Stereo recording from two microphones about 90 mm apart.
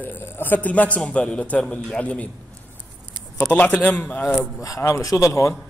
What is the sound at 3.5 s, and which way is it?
Speech, 15° left (ahead or behind).